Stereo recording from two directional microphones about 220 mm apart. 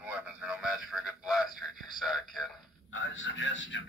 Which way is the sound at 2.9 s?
60° left (ahead or behind).